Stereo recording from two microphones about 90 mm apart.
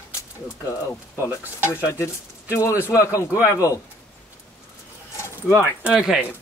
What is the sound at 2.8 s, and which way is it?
Speech, 35° left (ahead or behind).